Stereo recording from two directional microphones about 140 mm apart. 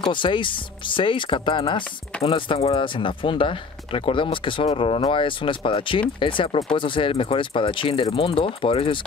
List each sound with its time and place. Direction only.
0.0 s speech: 35° left (ahead or behind)